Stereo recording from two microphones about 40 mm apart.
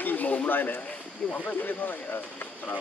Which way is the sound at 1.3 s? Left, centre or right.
Left.